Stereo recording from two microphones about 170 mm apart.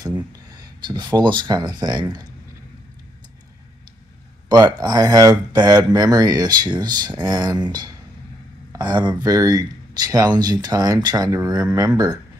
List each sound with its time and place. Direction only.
0.5 s speech: 25° right (ahead or behind)
4.5 s speech: 25° right (ahead or behind)